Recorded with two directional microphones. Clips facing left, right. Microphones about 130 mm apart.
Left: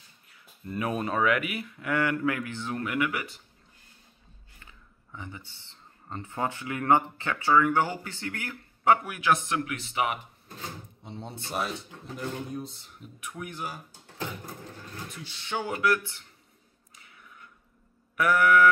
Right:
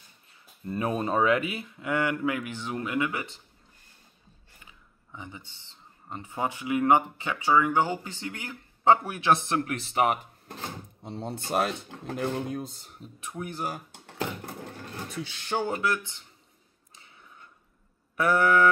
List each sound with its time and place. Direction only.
0.3 s speech: 25° right (ahead or behind)
4.6 s speech: 15° right (ahead or behind); by 11.5 s 45° right (ahead or behind)
11.5 s speech: 60° right (ahead or behind)
12.6 s speech: 45° right (ahead or behind)
13.2 s speech: 30° right (ahead or behind)
15.4 s speech: 40° right (ahead or behind)
15.7 s speech: 20° right (ahead or behind)
16.9 s a sound: 25° right (ahead or behind)
18.1 s speech: 25° right (ahead or behind)